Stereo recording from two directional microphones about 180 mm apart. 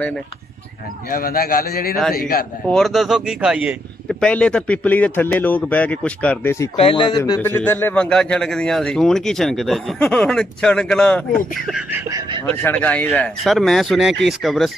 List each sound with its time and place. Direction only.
1.1 s a man's voice: 55° left (ahead or behind)
2.6 s a man's voice: centre (ahead or behind)
4.2 s speech: 5° left (ahead or behind)
6.8 s a man's voice: 30° left (ahead or behind); by 11.8 s 5° left (ahead or behind)
11.9 s a sound: 15° right (ahead or behind)
12.6 s a man's voice: 10° left (ahead or behind)